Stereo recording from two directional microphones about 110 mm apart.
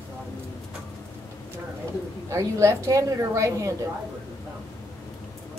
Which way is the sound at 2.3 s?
25° right (ahead or behind).